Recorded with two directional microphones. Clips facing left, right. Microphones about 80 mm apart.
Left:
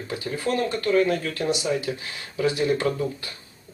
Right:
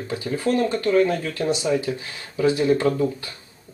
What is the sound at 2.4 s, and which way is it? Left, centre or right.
Speech, right.